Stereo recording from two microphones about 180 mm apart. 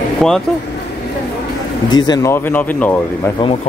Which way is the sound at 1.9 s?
25° left (ahead or behind).